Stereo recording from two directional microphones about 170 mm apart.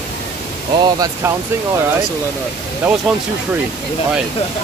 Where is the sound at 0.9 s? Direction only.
20° right (ahead or behind).